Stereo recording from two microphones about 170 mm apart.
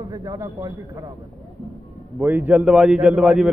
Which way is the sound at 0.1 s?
20° right (ahead or behind).